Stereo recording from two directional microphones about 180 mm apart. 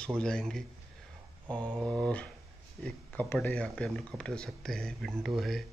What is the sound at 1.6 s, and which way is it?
Speech, 5° left (ahead or behind).